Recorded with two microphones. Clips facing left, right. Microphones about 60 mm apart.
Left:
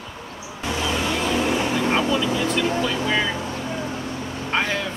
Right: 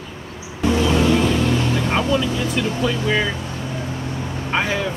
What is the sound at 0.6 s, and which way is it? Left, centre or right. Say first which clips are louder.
Music: right 7 dB; right.